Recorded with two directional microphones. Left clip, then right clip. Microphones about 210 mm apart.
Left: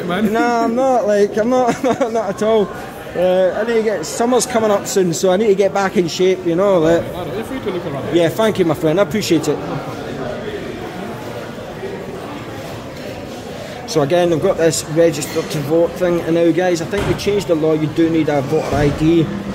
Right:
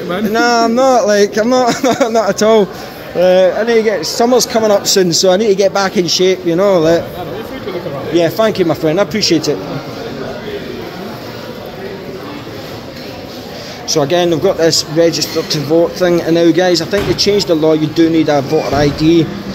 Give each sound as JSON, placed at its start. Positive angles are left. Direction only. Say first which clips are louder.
{"t": 0.3, "sound": "speech", "louder": "right 6 dB", "side_deg": -15}
{"t": 3.2, "sound": "a man's voice", "louder": "right 5 dB", "side_deg": -15}
{"t": 8.1, "sound": "a man's voice", "louder": "right 3 dB", "side_deg": 0}
{"t": 13.9, "sound": "a man's voice", "louder": "right 2 dB", "side_deg": -5}
{"t": 16.0, "sound": "speech", "louder": "right 4 dB", "side_deg": -20}